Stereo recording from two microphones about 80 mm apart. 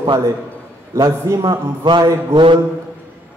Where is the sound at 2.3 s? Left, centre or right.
Right.